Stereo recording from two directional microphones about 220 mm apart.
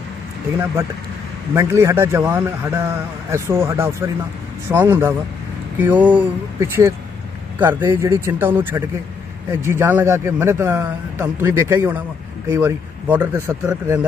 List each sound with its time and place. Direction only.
1.5 s speech: 10° right (ahead or behind)